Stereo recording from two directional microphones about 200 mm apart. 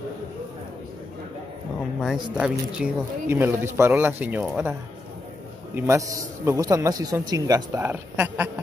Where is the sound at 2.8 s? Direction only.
10° right (ahead or behind).